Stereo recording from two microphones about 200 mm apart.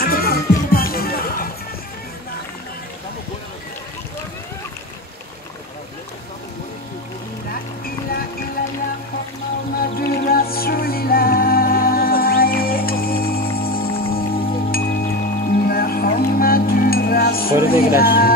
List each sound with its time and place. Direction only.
0.0 s music: 50° left (ahead or behind)
7.8 s music: 45° left (ahead or behind)
9.8 s music: 50° left (ahead or behind)